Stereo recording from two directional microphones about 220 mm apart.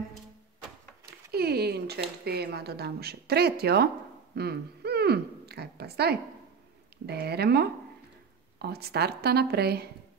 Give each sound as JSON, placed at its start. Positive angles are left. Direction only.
{"t": 1.3, "sound": "speech", "side_deg": -45}
{"t": 4.4, "sound": "a sound", "side_deg": -45}
{"t": 7.1, "sound": "speech", "side_deg": -45}